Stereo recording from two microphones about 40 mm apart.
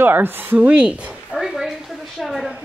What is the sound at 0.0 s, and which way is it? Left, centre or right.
Speech, right.